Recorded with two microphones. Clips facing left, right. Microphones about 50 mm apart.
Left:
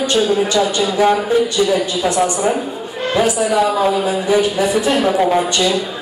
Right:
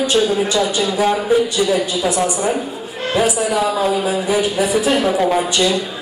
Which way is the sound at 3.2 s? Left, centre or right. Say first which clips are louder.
Left 2 dB; centre.